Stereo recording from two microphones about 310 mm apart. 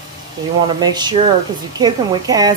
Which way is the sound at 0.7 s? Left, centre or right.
Centre.